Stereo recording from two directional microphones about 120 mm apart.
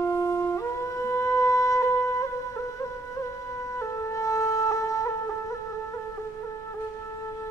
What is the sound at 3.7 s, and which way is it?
Wind instrument, 25° left (ahead or behind).